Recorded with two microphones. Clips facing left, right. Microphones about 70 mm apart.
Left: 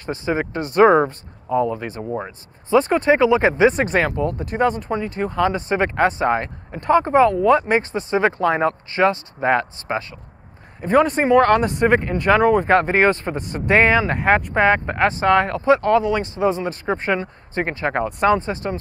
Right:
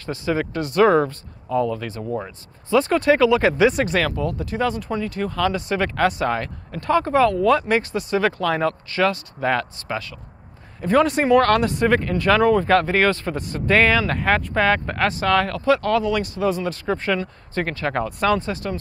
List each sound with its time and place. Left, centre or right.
0.0 s speech: left